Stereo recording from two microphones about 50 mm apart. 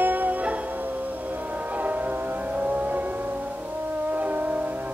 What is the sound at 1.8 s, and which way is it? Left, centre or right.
Music, right.